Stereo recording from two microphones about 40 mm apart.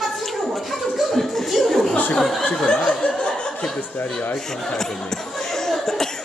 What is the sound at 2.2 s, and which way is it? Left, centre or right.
Speech, centre.